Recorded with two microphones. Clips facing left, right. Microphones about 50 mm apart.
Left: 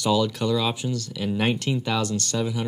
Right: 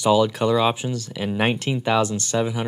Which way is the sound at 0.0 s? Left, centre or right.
Right.